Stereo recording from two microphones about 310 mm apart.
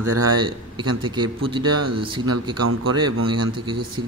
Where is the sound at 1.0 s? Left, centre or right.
Centre.